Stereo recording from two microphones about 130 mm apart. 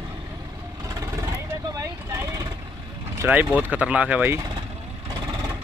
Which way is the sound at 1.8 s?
25° right (ahead or behind).